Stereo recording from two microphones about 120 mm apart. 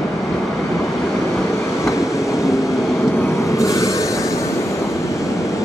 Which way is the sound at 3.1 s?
20° left (ahead or behind).